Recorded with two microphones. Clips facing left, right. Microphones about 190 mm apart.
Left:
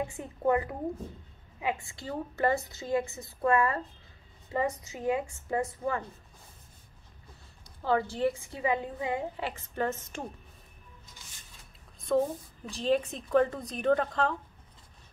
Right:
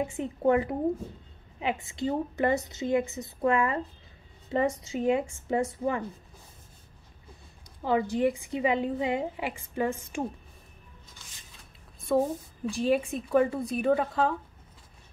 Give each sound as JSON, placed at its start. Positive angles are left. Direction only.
{"t": 0.0, "sound": "a woman's voice", "side_deg": -20}
{"t": 4.8, "sound": "a woman's voice", "side_deg": -20}
{"t": 7.8, "sound": "a woman's voice", "side_deg": -15}
{"t": 12.1, "sound": "a woman's voice", "side_deg": -10}